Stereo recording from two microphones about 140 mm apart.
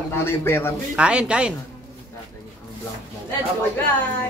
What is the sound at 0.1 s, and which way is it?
Speech, 15° left (ahead or behind).